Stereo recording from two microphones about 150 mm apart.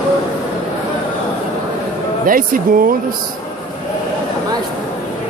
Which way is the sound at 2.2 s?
70° right (ahead or behind).